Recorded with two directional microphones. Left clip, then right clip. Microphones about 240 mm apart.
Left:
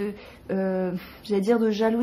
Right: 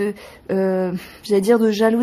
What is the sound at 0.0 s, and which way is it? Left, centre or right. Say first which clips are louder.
Speech: right 8 dB; right.